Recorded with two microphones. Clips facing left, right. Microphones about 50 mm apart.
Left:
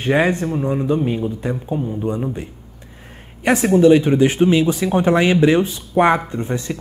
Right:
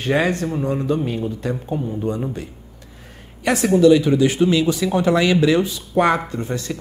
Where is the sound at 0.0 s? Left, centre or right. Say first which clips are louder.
Left 2 dB; left.